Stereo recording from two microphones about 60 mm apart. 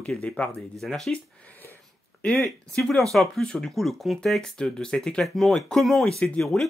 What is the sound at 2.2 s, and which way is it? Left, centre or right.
Speech, centre.